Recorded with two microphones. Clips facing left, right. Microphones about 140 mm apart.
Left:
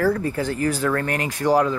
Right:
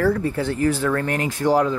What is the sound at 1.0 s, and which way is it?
Speech, 25° right (ahead or behind).